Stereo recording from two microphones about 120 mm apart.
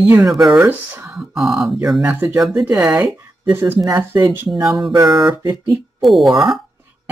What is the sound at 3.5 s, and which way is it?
Speech, 15° right (ahead or behind).